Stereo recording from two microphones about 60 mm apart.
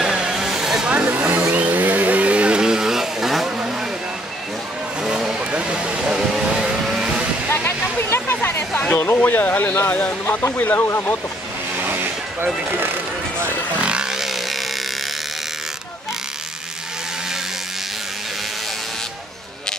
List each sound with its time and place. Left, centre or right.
0.0 s vehicle: centre
1.0 s a sound: right; by 3.5 s centre
3.5 s vehicle: centre
5.0 s vehicle: centre
5.5 s vehicle: centre
7.5 s a sound: left
8.9 s speech: left
11.8 s vehicle: right
12.6 s a sound: right
13.7 s wood: centre